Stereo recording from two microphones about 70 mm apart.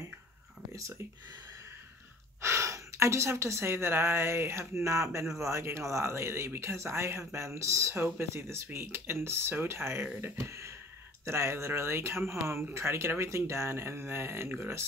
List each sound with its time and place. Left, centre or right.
2.4 s a woman's voice: right